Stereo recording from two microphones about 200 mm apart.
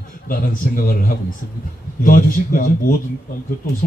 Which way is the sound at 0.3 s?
45° left (ahead or behind).